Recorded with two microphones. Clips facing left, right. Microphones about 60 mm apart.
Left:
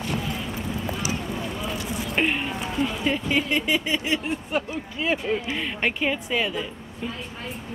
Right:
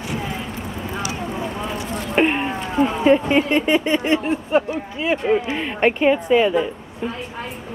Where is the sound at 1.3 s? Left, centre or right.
Right.